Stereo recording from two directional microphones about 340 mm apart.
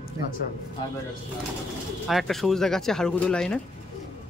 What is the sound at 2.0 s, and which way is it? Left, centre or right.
Speech, centre.